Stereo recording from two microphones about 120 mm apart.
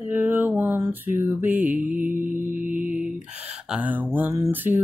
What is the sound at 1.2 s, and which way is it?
Mantra, 15° right (ahead or behind).